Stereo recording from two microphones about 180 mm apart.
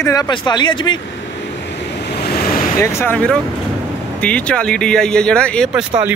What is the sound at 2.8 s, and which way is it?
Speech, 15° left (ahead or behind).